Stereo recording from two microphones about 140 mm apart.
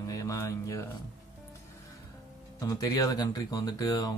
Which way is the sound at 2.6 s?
25° left (ahead or behind).